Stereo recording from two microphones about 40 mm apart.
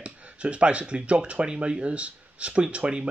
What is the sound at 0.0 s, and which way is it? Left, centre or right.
Speech, right.